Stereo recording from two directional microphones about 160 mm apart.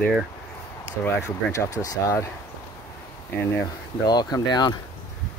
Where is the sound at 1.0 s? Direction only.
15° left (ahead or behind).